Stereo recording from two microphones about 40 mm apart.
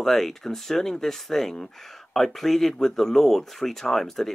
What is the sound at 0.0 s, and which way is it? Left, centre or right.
Speech, centre.